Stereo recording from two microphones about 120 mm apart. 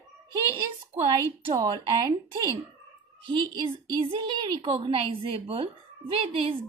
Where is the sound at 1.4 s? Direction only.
40° right (ahead or behind).